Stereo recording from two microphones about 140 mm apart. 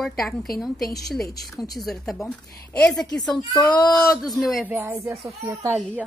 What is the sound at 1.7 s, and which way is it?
A woman's voice, centre (ahead or behind).